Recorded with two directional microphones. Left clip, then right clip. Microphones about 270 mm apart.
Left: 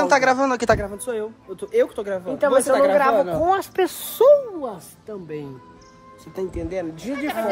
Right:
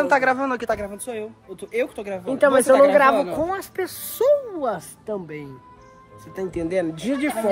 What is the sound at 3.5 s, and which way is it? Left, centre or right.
Speech, centre.